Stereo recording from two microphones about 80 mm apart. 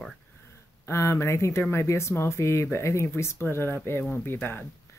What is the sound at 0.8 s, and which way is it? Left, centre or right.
Speech, left.